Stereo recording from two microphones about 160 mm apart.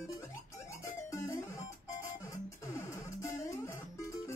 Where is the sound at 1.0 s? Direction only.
20° left (ahead or behind).